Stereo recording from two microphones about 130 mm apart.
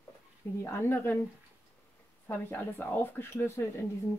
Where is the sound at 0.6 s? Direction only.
20° left (ahead or behind).